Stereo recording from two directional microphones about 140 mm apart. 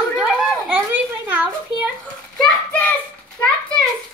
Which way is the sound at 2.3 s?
10° left (ahead or behind).